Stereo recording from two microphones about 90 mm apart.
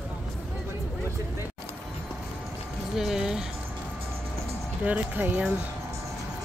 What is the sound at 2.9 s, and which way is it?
Music, 5° right (ahead or behind).